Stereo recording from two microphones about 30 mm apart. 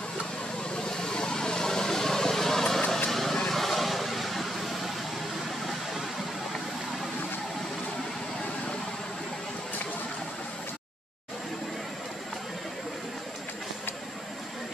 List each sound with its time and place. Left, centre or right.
0.7 s vehicle: left; by 4.9 s centre